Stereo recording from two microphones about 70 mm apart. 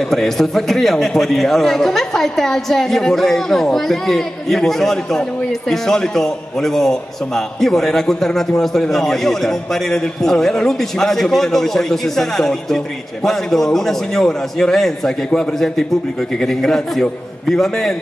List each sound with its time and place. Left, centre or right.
0.1 s a man's voice: centre